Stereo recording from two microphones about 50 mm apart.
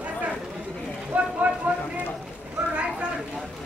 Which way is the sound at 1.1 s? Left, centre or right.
Right.